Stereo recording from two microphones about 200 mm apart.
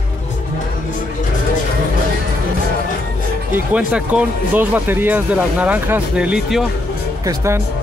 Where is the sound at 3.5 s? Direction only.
5° right (ahead or behind).